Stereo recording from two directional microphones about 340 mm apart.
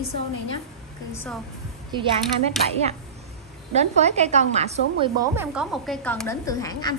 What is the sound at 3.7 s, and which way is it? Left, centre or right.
A woman's voice, centre.